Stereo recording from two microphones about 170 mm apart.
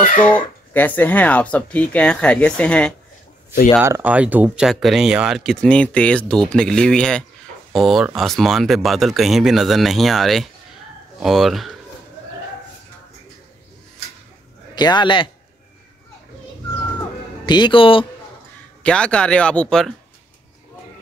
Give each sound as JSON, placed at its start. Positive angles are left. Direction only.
{"t": 0.2, "sound": "speech", "side_deg": 10}
{"t": 3.8, "sound": "speech", "side_deg": -10}
{"t": 14.8, "sound": "a man's voice", "side_deg": 25}
{"t": 17.5, "sound": "speech", "side_deg": 30}
{"t": 18.8, "sound": "speech", "side_deg": 5}